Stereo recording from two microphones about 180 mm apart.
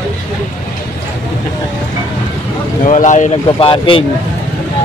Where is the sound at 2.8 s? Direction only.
45° left (ahead or behind).